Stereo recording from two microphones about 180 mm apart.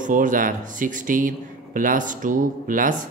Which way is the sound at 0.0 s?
45° right (ahead or behind).